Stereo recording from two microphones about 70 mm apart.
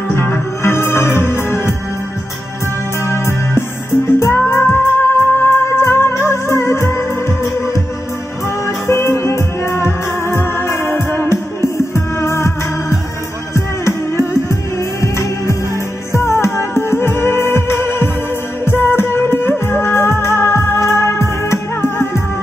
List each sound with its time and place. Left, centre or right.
0.1 s music: left
3.1 s music: left
8.6 s music: left